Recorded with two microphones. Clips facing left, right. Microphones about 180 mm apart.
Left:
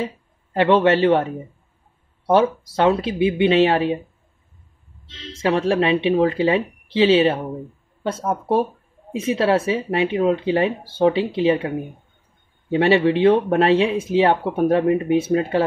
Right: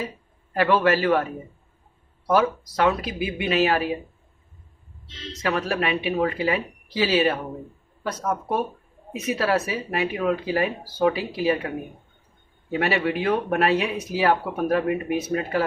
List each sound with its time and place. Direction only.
0.0 s speech: 25° left (ahead or behind)
5.3 s speech: 25° left (ahead or behind)
12.7 s speech: 25° left (ahead or behind)